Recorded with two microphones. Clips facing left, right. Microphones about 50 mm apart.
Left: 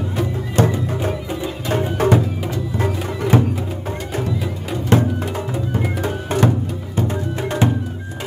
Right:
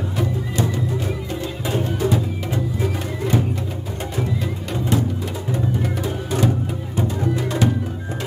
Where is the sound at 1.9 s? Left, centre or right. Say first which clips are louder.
Left 6 dB; left.